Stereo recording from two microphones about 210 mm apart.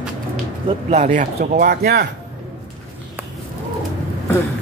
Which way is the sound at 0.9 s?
35° right (ahead or behind).